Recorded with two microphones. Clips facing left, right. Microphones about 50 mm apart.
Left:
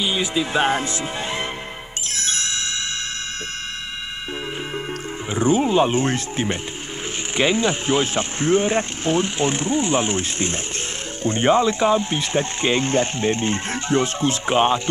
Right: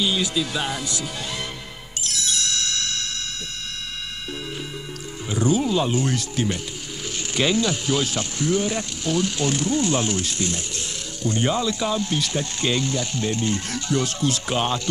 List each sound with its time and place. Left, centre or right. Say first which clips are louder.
0.0 s speech: left 1 dB; left
2.0 s music: even; left
5.3 s speech: left 3 dB; left